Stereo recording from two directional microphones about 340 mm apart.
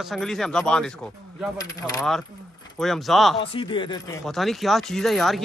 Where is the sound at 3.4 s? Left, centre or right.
Centre.